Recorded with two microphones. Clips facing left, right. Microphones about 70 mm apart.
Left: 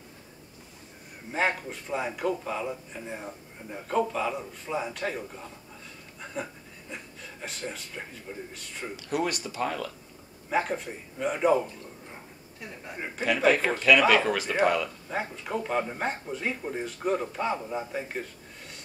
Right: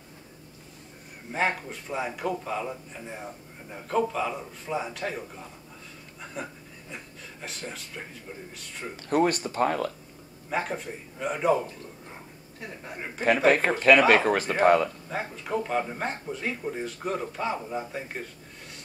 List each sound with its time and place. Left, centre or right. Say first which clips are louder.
1.3 s speech: even; centre
7.4 s speech: left 1 dB; centre
8.9 s a man's voice: right 6 dB; right
10.5 s speech: left 2 dB; centre
13.2 s a man's voice: right 2 dB; right
15.0 s speech: even; centre